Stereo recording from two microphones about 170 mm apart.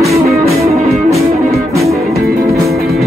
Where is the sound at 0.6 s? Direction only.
40° right (ahead or behind).